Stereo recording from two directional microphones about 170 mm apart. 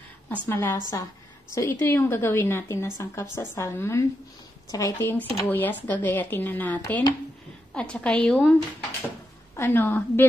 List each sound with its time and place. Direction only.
0.3 s a woman's voice: 10° left (ahead or behind)
9.6 s a woman's voice: 10° left (ahead or behind)